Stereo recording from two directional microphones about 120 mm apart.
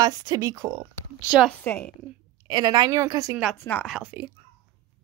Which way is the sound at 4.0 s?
15° right (ahead or behind).